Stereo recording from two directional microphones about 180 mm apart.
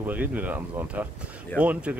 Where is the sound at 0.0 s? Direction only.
10° right (ahead or behind).